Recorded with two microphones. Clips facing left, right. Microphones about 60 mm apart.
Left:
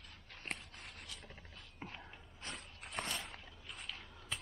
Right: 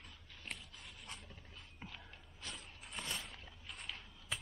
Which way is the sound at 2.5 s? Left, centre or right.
Left.